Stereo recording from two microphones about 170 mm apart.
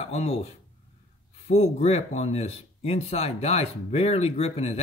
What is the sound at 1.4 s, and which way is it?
Speech, 40° left (ahead or behind).